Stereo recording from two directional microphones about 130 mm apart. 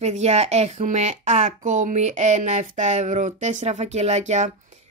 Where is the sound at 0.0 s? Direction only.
55° right (ahead or behind).